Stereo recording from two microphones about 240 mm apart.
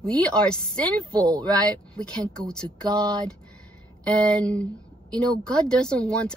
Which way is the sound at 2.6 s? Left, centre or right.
Centre.